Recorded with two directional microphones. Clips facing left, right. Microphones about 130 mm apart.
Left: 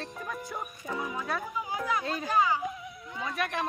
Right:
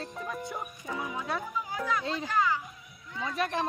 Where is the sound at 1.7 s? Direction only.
15° left (ahead or behind).